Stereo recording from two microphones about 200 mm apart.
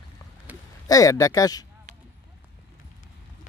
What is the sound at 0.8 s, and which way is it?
Speech, 15° left (ahead or behind).